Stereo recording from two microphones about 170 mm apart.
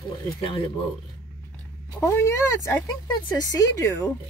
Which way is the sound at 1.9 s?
15° left (ahead or behind).